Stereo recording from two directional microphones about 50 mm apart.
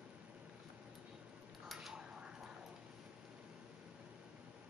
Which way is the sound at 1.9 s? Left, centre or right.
Centre.